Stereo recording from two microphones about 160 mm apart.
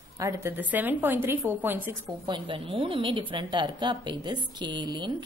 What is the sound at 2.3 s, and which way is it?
A woman's voice, 30° right (ahead or behind).